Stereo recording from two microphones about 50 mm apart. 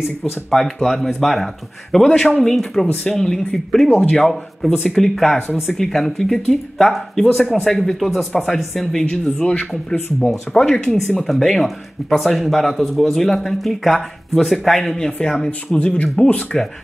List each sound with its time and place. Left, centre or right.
0.2 s speech: centre
9.2 s speech: left
10.5 s speech: centre
15.0 s speech: centre